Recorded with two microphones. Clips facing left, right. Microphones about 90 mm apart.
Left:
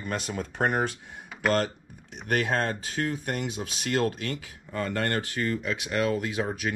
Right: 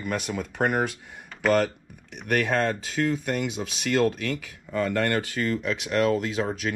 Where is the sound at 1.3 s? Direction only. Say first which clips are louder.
Right 2 dB; 10° left (ahead or behind).